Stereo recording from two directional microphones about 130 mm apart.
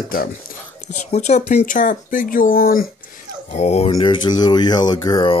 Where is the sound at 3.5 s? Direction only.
55° left (ahead or behind).